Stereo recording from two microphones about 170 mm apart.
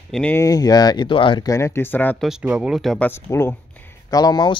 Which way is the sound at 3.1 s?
15° left (ahead or behind).